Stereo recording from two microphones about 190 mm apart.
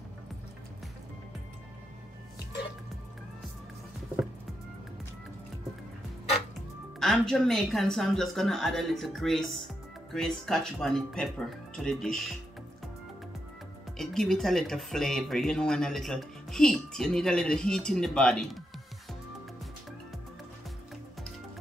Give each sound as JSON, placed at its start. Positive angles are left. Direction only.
{"t": 7.0, "sound": "speech", "side_deg": 0}
{"t": 13.9, "sound": "speech", "side_deg": 0}